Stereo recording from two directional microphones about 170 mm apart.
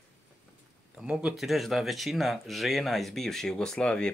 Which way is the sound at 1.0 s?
5° right (ahead or behind).